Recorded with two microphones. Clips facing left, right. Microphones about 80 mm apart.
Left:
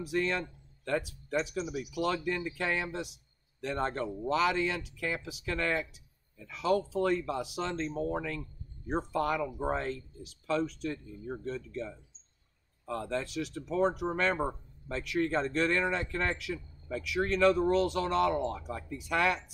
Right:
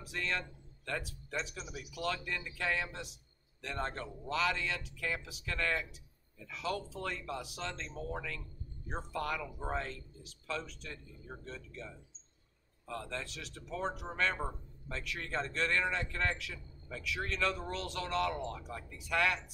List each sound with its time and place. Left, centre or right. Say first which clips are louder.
0.0 s speech: left 7 dB; centre
7.9 s speech: left 8 dB; left
9.1 s speech: left 6 dB; centre